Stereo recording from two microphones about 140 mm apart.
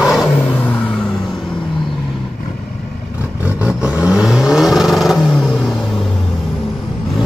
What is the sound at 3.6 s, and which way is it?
Vehicle, 10° right (ahead or behind).